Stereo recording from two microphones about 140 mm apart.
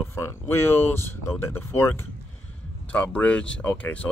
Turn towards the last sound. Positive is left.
turn(degrees=10)  # may be behind; listen again after turning